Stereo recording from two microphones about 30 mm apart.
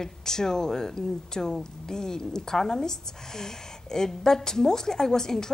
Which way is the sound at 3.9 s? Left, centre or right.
Centre.